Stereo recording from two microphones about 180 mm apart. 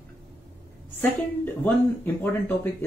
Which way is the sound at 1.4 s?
10° left (ahead or behind).